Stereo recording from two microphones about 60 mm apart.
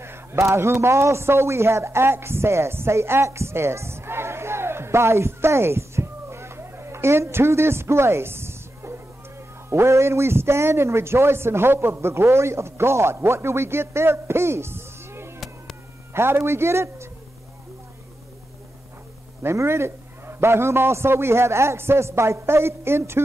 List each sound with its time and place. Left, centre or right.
0.0 s a man's voice: right
19.4 s a man's voice: right